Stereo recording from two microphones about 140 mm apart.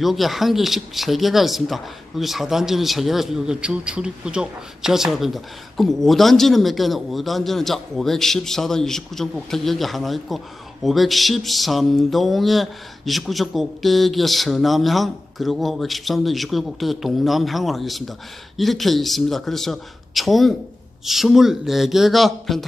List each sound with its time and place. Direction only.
0.0 s speech: centre (ahead or behind)